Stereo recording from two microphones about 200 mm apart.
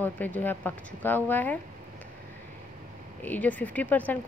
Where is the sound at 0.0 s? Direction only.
10° left (ahead or behind).